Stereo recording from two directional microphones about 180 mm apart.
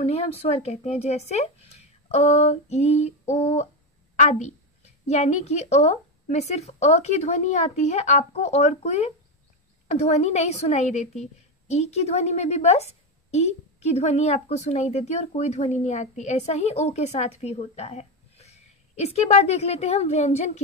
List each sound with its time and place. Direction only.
0.0 s a woman's voice: 35° left (ahead or behind)